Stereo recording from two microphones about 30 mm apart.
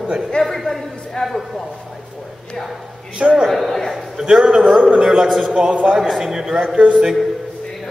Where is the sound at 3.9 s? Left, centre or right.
Centre.